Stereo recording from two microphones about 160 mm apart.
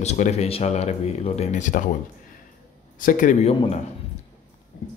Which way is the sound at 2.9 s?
55° left (ahead or behind).